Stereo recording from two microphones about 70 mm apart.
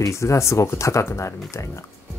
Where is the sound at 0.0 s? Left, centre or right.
Left.